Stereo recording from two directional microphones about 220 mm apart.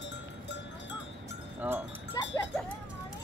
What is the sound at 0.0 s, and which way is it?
Cowbell, 50° left (ahead or behind).